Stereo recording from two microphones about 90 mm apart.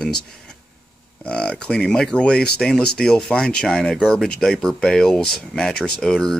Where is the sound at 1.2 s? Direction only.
10° left (ahead or behind).